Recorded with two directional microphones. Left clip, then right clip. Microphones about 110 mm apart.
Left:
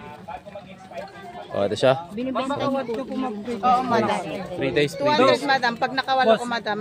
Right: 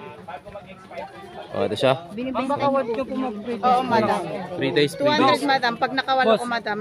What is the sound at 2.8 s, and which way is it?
Speech, 50° right (ahead or behind).